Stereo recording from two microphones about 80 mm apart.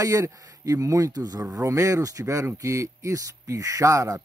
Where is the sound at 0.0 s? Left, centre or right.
Right.